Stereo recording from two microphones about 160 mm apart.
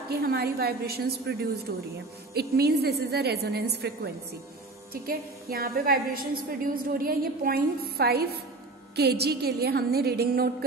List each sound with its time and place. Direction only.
0.1 s a woman's voice: 85° right
5.0 s a woman's voice: 70° right (ahead or behind)
8.9 s a woman's voice: 90° right; by 10.5 s 70° right (ahead or behind)